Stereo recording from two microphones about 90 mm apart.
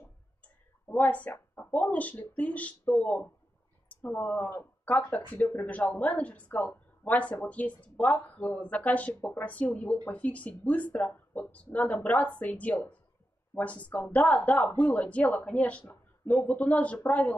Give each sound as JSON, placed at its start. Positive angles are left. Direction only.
{"t": 0.4, "sound": "speech", "side_deg": 20}